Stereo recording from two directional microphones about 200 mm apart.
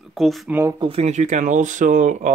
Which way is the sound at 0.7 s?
25° right (ahead or behind).